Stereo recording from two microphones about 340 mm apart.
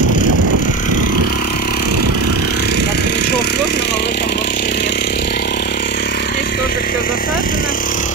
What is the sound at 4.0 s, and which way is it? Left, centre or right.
Vehicle, left.